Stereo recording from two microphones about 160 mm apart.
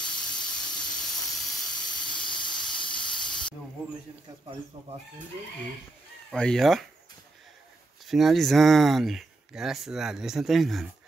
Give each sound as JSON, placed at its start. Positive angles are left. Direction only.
{"t": 0.0, "sound": "steam", "side_deg": 5}
{"t": 2.1, "sound": "steam", "side_deg": 30}
{"t": 4.7, "sound": "speech", "side_deg": -35}
{"t": 6.3, "sound": "speech", "side_deg": 5}
{"t": 8.1, "sound": "speech", "side_deg": 0}